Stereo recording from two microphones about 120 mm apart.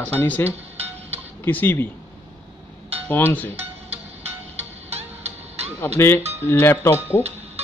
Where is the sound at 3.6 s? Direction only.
60° right (ahead or behind).